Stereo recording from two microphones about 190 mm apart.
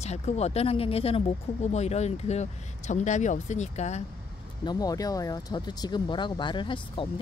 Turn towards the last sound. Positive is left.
turn(degrees=25)  # may be behind; listen again after turning